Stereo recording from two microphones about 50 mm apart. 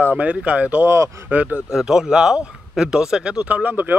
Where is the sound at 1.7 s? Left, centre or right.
Centre.